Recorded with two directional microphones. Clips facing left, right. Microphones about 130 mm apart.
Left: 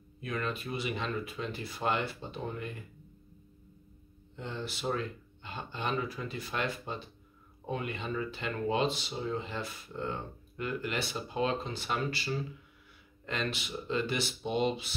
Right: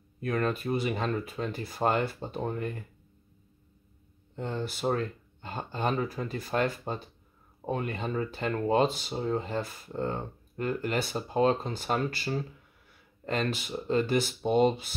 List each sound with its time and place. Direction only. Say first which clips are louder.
0.2 s speech: right 6 dB; 50° right (ahead or behind)
4.4 s speech: right 6 dB; 45° right (ahead or behind)